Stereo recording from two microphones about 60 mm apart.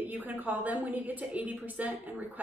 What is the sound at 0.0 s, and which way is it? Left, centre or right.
A woman's voice, right.